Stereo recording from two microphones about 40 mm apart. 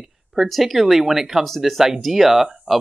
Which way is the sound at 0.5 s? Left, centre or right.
Centre.